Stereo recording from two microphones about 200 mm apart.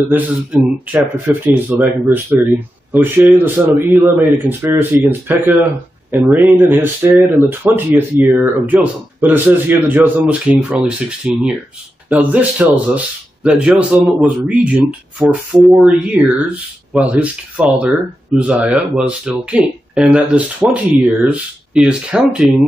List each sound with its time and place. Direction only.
0.1 s speech: 10° right (ahead or behind)
6.4 s speech: 10° right (ahead or behind)